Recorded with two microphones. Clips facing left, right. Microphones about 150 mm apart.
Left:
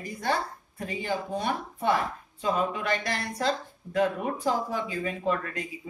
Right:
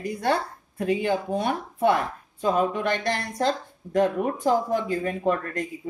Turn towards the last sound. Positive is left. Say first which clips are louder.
# right 4 dB
turn(degrees=-50)  # may be behind; listen again after turning